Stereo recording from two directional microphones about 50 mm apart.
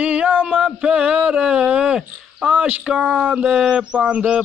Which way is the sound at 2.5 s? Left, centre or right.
Right.